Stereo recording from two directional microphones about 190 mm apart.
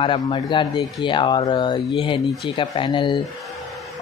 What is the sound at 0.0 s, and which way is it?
A man's voice, 25° left (ahead or behind).